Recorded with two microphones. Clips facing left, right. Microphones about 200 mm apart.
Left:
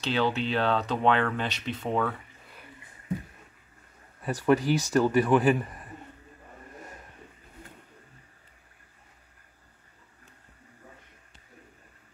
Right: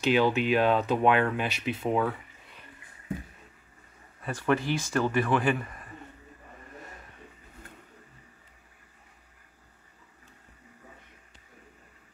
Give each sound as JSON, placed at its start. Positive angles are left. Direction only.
{"t": 0.0, "sound": "speech", "side_deg": -10}
{"t": 4.6, "sound": "speech", "side_deg": 40}
{"t": 5.0, "sound": "speech", "side_deg": 10}